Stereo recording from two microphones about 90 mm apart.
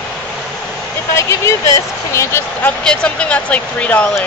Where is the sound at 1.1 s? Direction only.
30° left (ahead or behind).